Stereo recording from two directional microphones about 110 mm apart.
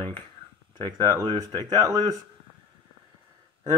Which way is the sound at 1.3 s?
35° right (ahead or behind).